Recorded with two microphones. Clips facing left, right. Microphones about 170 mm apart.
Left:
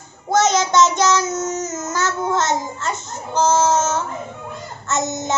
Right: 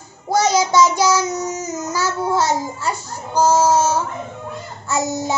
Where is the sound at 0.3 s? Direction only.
10° right (ahead or behind).